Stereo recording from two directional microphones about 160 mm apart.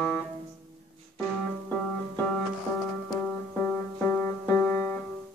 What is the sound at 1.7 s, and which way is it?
Music, 10° left (ahead or behind).